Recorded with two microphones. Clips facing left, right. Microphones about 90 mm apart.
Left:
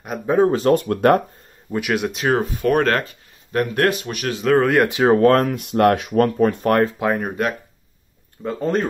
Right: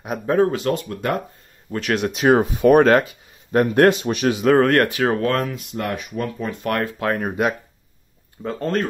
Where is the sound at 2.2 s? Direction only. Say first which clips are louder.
Right 7 dB; 15° right (ahead or behind).